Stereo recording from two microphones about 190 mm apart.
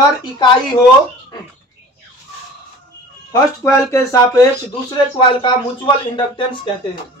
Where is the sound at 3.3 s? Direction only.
15° left (ahead or behind).